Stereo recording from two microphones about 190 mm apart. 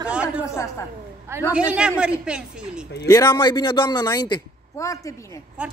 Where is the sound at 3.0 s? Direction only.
20° left (ahead or behind).